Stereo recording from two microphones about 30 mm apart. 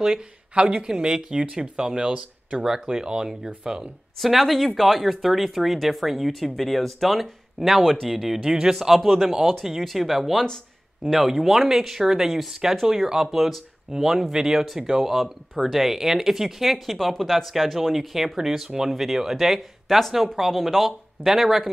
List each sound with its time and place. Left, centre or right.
0.0 s speech: centre
4.2 s speech: centre
7.8 s speech: centre
8.1 s speech: centre
8.5 s speech: centre
9.8 s speech: centre
13.9 s speech: centre